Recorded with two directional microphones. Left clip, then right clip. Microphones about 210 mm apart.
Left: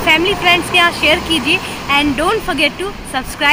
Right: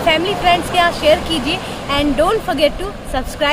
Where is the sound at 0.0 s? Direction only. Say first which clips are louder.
Left 2 dB; 10° right (ahead or behind).